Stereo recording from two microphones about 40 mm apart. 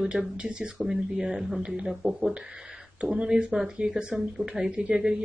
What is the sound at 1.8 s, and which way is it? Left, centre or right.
Speech, centre.